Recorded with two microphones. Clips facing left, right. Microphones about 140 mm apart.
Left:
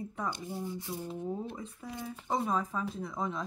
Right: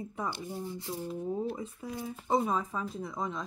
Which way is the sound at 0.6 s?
15° left (ahead or behind).